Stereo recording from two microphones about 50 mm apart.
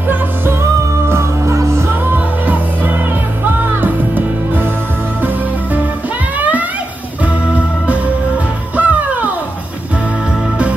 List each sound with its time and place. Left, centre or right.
1.0 s music: right
2.1 s music: right
8.7 s music: right